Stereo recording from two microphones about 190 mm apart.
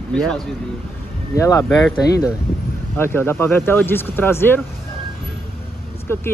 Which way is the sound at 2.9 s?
10° left (ahead or behind).